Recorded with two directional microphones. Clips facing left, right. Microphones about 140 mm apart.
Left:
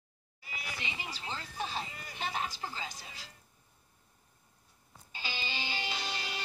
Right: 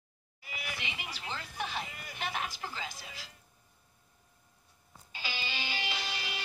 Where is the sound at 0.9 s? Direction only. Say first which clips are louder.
Even; 30° left (ahead or behind).